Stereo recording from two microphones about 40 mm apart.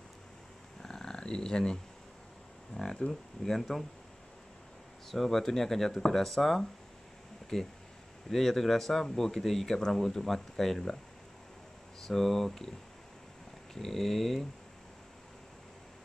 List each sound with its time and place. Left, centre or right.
0.8 s a sound: centre
2.7 s speech: centre
5.1 s speech: centre
12.1 s speech: centre
13.7 s speech: centre